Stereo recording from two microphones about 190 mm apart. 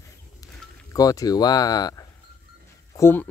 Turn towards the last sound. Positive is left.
turn(degrees=10)  # may be behind; listen again after turning